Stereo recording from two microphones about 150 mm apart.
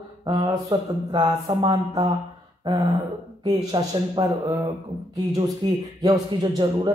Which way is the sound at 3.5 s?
30° right (ahead or behind).